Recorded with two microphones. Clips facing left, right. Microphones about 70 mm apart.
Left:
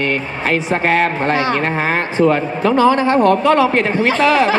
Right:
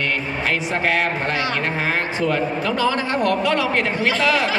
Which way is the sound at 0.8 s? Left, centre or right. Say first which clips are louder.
Left 5 dB; left.